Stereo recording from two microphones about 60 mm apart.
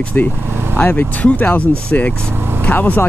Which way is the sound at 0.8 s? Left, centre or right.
Left.